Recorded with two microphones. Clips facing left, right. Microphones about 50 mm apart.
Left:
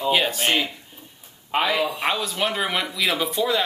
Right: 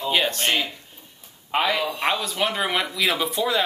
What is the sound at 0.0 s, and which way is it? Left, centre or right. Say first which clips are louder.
Speech: left 1 dB; centre.